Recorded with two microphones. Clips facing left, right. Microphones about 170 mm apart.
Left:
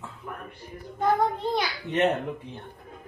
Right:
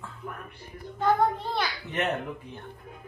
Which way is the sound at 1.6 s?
20° left (ahead or behind).